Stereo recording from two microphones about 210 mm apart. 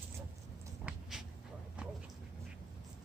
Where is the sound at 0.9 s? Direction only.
5° right (ahead or behind).